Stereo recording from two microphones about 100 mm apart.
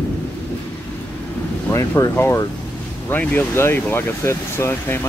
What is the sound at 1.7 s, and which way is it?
Speech, 30° left (ahead or behind).